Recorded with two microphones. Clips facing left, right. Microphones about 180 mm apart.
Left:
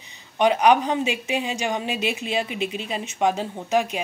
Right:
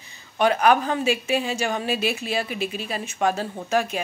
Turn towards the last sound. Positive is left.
turn(degrees=15)  # may be behind; listen again after turning